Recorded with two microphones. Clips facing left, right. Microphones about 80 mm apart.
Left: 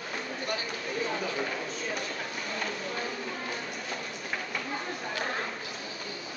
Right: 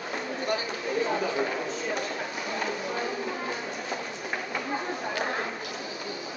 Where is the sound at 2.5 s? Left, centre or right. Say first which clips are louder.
Right 4 dB; centre.